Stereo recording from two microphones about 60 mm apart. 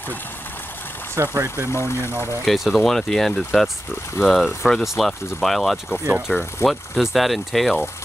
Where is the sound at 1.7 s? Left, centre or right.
Left.